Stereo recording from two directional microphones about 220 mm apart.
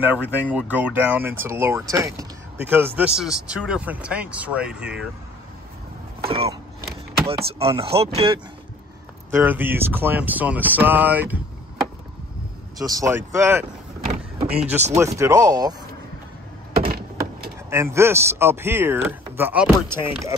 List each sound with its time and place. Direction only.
0.0 s speech: 10° right (ahead or behind)
6.2 s vehicle: 25° right (ahead or behind)
7.2 s speech: 25° right (ahead or behind)
9.4 s speech: 10° right (ahead or behind)
12.7 s speech: 15° right (ahead or behind)
14.0 s vehicle: 40° right (ahead or behind)
15.1 s speech: 15° right (ahead or behind)
17.6 s speech: 10° right (ahead or behind)